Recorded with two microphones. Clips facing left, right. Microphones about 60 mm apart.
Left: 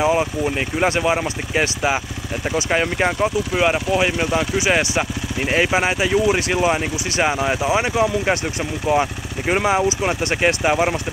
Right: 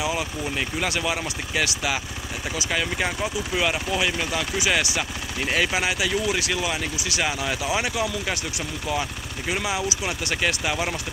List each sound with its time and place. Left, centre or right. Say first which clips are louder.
0.0 s speech: left 9 dB; left